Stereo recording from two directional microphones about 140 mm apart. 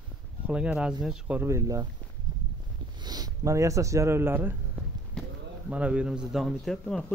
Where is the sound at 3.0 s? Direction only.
30° right (ahead or behind); by 7.0 s 5° left (ahead or behind).